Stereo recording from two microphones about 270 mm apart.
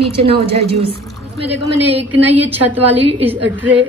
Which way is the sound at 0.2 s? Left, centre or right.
Right.